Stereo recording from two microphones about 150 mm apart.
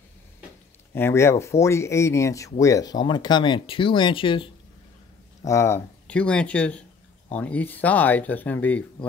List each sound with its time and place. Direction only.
0.9 s speech: 15° left (ahead or behind); by 4.5 s 35° left (ahead or behind)
5.4 s speech: 20° left (ahead or behind)